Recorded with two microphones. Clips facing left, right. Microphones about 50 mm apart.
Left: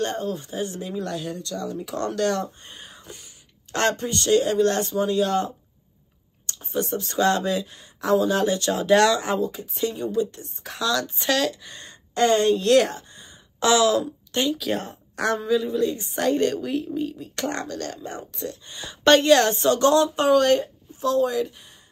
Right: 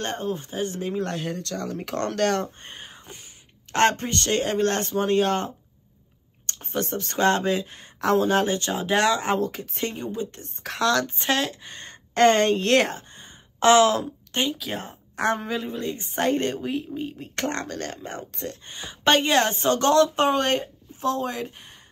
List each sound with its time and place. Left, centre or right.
0.0 s a man's voice: right
9.4 s a man's voice: right
10.6 s speech: right
14.5 s speech: centre
15.1 s a woman's voice: right
15.4 s speech: right
19.0 s a woman's voice: centre
19.5 s speech: right